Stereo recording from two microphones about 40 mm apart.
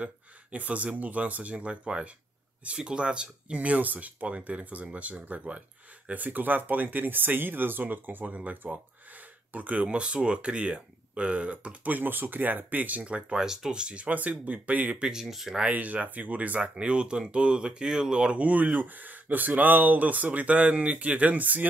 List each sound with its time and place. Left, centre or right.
0.0 s speech: right
3.5 s speech: right
8.4 s speech: right
12.0 s speech: right
13.0 s speech: right
13.4 s speech: centre
13.7 s speech: right
14.1 s speech: right
15.0 s speech: centre
15.7 s speech: right
16.7 s speech: right
17.8 s speech: centre
18.1 s speech: right
18.4 s speech: right